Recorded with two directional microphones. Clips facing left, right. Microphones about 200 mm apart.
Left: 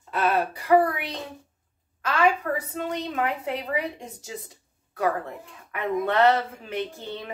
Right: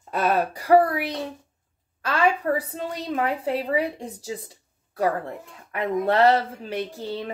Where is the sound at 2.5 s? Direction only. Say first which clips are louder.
Right 1 dB; 35° right (ahead or behind).